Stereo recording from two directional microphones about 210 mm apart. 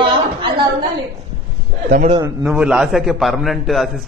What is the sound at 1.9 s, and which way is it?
Speech, 35° right (ahead or behind).